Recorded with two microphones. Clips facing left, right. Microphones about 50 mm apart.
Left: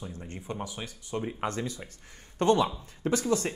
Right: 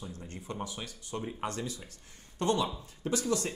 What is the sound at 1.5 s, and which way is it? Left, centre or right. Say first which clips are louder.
Speech: left 4 dB; left.